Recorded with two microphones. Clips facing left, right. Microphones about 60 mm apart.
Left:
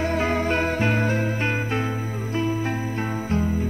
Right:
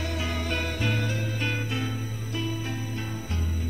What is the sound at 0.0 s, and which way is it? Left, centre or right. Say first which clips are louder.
Music: left 9 dB; left.